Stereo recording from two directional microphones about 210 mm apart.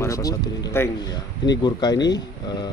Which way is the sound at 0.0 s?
15° left (ahead or behind).